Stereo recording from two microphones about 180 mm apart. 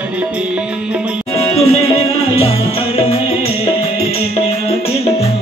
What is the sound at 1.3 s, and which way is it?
Music, 35° left (ahead or behind).